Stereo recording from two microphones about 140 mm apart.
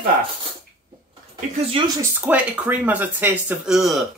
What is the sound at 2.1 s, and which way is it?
Speech, 10° right (ahead or behind).